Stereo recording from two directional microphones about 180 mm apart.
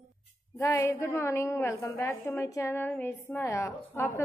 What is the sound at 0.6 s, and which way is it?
A woman's voice, 15° left (ahead or behind).